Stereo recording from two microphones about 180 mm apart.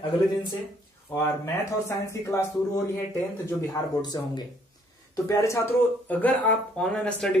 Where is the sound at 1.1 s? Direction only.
15° left (ahead or behind).